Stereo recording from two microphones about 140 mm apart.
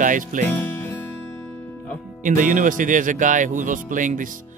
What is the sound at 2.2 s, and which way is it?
Speech, 70° right (ahead or behind).